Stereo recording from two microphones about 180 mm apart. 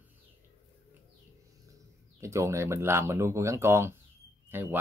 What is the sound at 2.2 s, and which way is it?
Speech, 15° right (ahead or behind).